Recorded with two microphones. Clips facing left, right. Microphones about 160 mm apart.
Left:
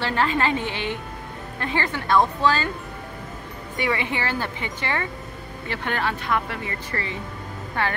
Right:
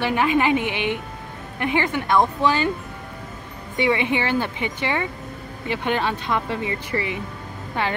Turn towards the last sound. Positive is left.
turn(degrees=-15)  # may be behind; listen again after turning